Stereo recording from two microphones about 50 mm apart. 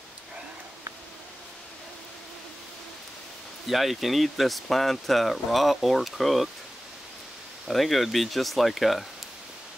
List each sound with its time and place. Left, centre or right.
3.6 s speech: centre
7.6 s speech: centre